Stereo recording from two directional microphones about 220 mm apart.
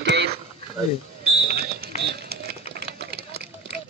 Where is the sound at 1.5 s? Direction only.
45° right (ahead or behind).